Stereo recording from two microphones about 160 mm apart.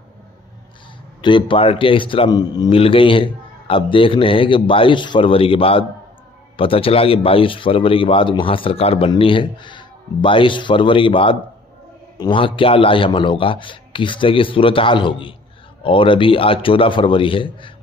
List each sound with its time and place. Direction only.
1.2 s speech: 30° left (ahead or behind)